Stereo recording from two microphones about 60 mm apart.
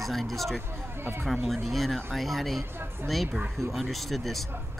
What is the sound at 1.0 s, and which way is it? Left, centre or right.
Speech, right.